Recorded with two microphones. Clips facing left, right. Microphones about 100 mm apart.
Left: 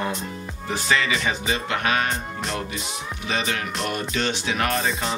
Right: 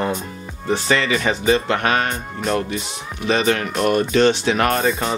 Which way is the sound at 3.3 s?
55° right (ahead or behind).